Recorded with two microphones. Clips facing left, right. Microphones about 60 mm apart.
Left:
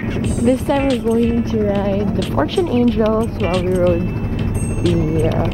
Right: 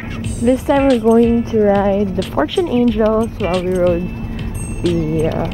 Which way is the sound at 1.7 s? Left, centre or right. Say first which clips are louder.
Right 4 dB; centre.